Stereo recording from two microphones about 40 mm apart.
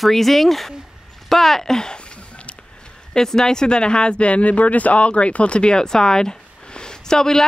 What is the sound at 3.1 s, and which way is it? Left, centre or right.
Speech, centre.